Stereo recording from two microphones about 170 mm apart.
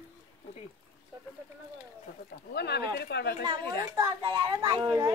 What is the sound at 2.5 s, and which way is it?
Speech, 75° left (ahead or behind).